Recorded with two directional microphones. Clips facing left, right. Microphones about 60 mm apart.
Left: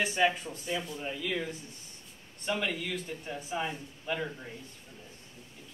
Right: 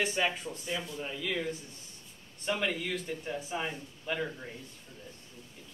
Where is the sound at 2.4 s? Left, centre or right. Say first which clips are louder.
Even; centre.